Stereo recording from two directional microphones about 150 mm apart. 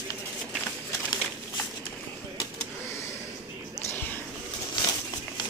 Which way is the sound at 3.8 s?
15° left (ahead or behind).